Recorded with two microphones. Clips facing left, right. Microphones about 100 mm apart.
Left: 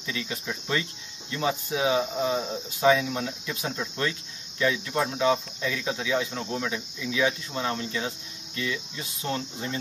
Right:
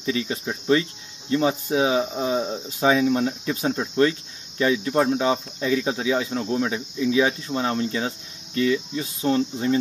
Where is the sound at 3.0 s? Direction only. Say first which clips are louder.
Right 9 dB; 40° right (ahead or behind).